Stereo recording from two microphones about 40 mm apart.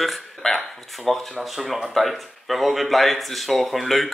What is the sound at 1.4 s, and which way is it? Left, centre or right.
Speech, centre.